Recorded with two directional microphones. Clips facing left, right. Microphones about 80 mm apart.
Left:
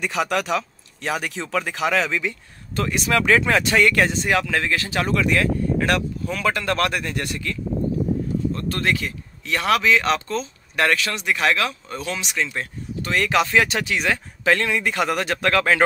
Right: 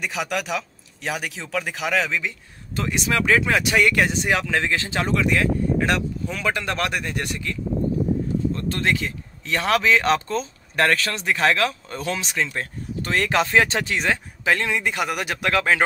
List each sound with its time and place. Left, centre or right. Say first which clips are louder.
0.0 s speech: left 4 dB; centre
2.7 s speech: left 2 dB; centre
8.6 s speech: even; right
9.8 s speech: even; right; by 15.8 s centre